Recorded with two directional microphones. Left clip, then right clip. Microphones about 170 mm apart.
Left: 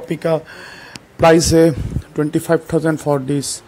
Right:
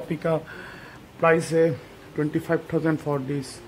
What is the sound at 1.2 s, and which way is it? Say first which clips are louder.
Speech: left 9 dB; 35° left (ahead or behind).